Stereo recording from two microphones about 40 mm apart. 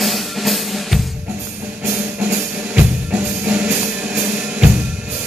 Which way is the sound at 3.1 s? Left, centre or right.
Right.